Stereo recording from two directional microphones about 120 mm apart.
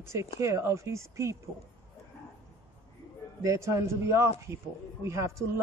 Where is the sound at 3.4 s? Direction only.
25° right (ahead or behind).